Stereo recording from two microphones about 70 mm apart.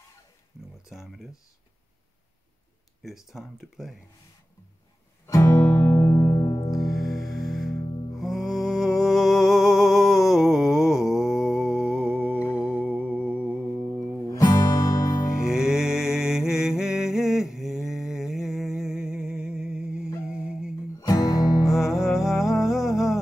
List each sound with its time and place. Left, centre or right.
0.8 s speech: centre
3.0 s speech: centre
5.2 s music: left
6.3 s music: left
6.8 s music: centre
14.3 s music: left
15.4 s mantra: centre
20.2 s music: centre
21.0 s music: left
21.7 s music: centre